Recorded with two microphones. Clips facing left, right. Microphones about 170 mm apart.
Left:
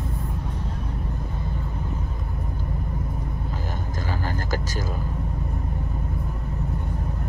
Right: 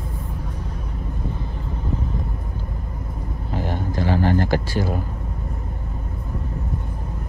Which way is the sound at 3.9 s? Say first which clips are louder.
Right 11 dB; 45° left (ahead or behind).